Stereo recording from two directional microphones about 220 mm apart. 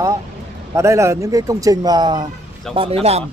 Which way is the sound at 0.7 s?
15° right (ahead or behind).